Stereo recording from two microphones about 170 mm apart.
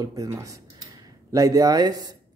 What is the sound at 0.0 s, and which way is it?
Speech, 20° right (ahead or behind).